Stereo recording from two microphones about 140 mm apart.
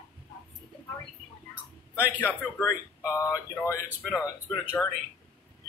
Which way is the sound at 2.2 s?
15° left (ahead or behind).